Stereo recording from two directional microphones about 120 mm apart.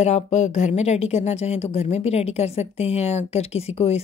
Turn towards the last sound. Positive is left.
turn(degrees=60)  # may be behind; listen again after turning